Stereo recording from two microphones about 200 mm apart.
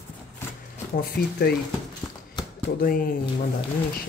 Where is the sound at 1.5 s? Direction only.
50° left (ahead or behind).